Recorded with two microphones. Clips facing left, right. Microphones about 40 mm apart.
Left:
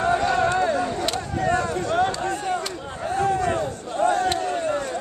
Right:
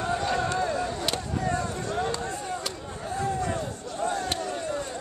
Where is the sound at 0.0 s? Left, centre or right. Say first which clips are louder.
Left 7 dB; left.